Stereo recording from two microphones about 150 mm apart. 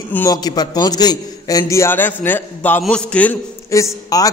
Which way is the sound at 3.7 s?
20° left (ahead or behind).